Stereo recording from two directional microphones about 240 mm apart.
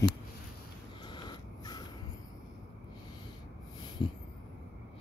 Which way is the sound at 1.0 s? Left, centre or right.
Centre.